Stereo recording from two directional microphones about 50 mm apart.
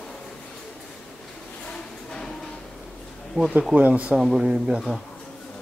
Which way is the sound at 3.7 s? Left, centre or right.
Right.